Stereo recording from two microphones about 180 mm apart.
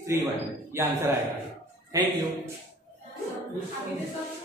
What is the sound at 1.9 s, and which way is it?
Speech, 20° right (ahead or behind).